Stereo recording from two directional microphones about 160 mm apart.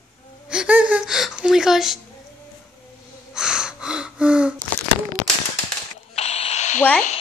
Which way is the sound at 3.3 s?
5° right (ahead or behind).